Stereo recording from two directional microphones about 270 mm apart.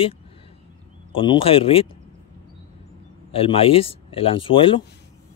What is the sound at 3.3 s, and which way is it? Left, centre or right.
Speech, left.